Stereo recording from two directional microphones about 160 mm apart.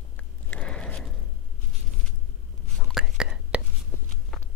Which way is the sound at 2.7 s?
Centre (ahead or behind).